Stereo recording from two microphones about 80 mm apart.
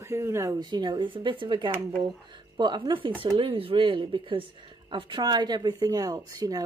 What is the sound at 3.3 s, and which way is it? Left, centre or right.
A woman's voice, right.